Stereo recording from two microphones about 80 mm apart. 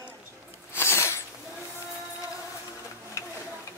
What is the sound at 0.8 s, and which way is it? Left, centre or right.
Sneeze, left.